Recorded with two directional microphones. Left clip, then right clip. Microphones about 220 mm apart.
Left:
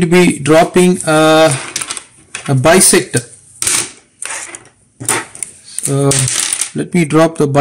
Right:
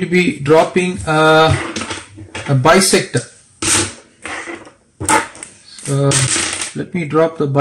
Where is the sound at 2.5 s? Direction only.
35° left (ahead or behind).